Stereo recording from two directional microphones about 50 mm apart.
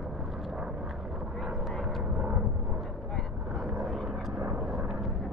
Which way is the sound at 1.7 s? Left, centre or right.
Centre.